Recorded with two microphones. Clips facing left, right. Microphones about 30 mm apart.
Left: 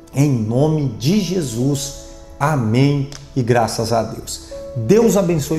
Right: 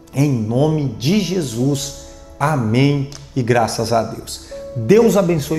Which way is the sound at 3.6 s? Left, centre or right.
Right.